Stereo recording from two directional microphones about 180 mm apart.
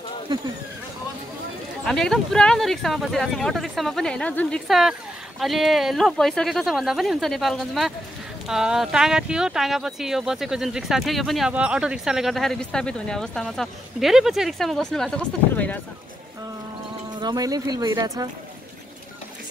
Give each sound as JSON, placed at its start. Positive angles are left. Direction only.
{"t": 0.3, "sound": "speech", "side_deg": -25}
{"t": 1.9, "sound": "speech", "side_deg": 5}
{"t": 17.1, "sound": "speech", "side_deg": -20}